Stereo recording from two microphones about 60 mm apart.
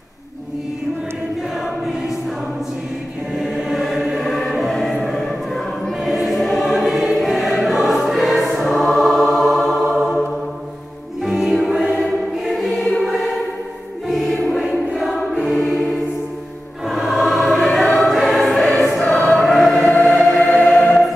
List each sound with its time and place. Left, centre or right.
1.6 s choir: centre
3.3 s choir: centre
8.5 s music: centre
11.2 s music: centre
11.6 s choir: centre
13.0 s music: centre
14.6 s choir: centre
19.0 s choir: centre
19.3 s choir: centre
20.1 s music: centre